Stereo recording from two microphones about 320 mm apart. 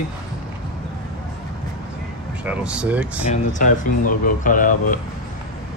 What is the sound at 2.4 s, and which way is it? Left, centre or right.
Speech, centre.